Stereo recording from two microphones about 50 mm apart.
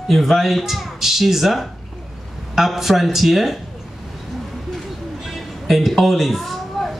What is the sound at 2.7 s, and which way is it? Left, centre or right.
Speech, centre.